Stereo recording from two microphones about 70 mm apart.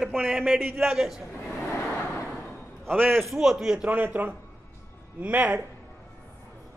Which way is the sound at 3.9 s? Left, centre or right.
Right.